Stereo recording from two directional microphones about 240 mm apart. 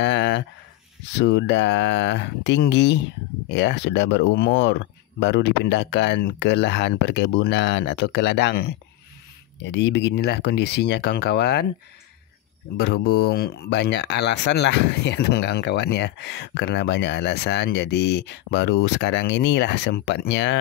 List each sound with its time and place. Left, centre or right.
0.0 s a sound: left
1.1 s speech: left
12.7 s speech: left